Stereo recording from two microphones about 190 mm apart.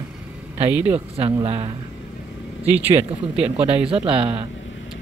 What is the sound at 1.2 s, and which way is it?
Speech, 30° right (ahead or behind).